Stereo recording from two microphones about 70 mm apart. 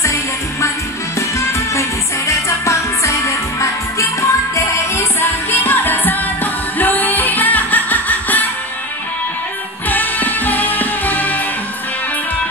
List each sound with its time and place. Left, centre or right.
0.0 s music: left
5.6 s music: left
9.8 s music: left